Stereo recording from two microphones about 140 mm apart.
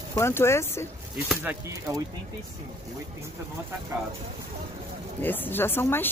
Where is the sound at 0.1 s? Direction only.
20° left (ahead or behind).